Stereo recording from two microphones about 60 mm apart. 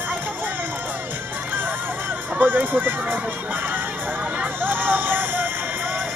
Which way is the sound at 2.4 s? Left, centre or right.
Right.